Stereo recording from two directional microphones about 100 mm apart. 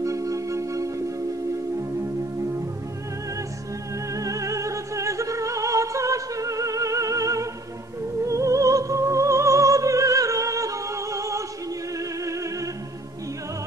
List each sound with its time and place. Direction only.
0.0 s music: 35° right (ahead or behind)
4.1 s music: 35° right (ahead or behind)